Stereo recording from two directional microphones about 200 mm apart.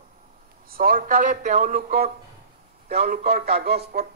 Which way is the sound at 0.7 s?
45° right (ahead or behind).